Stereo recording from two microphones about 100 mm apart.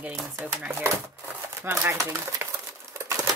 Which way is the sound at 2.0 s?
35° right (ahead or behind).